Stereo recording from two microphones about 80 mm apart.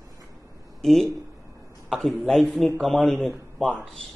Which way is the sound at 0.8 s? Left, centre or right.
Centre.